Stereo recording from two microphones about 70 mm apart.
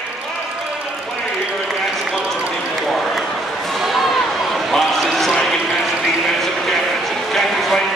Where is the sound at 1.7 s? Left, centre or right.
Centre.